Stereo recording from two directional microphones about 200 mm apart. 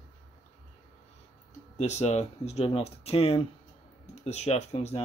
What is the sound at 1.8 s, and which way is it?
Speech, 35° left (ahead or behind).